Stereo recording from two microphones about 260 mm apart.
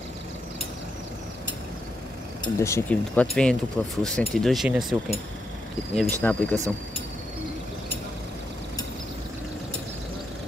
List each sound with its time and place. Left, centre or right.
2.4 s speech: centre
6.2 s speech: centre